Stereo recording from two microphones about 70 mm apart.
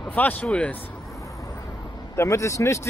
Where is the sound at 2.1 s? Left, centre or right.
Left.